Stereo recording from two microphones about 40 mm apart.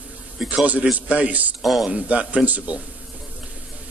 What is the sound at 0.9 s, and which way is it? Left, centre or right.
Speech, right.